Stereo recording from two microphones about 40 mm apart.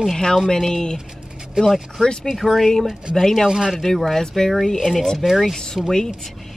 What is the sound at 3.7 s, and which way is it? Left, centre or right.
A woman's voice, centre.